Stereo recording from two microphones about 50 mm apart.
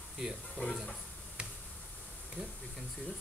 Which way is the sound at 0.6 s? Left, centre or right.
Left.